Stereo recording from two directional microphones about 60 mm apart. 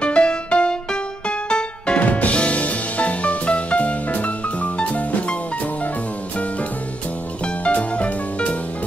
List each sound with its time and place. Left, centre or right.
0.0 s music: centre
7.4 s music: centre